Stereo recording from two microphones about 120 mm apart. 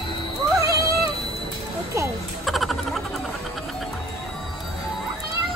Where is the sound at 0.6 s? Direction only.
30° right (ahead or behind).